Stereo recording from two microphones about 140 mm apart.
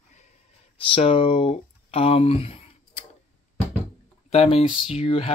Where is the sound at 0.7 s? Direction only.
40° left (ahead or behind).